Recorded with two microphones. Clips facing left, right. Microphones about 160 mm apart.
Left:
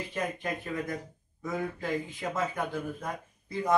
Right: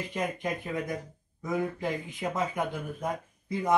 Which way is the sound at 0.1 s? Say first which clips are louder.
Right 2 dB; 15° right (ahead or behind).